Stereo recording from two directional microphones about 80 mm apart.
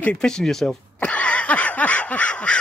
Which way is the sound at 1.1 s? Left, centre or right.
Centre.